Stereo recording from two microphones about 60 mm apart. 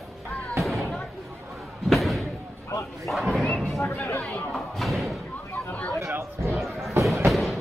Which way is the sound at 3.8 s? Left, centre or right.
Left.